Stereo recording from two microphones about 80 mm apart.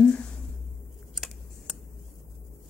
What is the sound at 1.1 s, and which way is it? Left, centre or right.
Typing, centre.